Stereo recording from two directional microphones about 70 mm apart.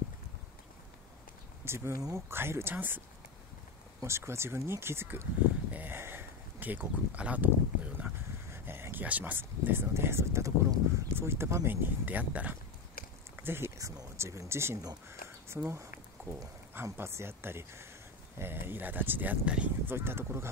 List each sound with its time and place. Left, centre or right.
1.6 s speech: right
2.0 s speech: right
2.2 s speech: right
4.0 s speech: right
8.5 s a sound: right
9.0 s speech: right
13.4 s a sound: right
13.7 s speech: right
16.2 s a sound: right
16.7 s speech: right
19.4 s speech: centre
19.9 s speech: right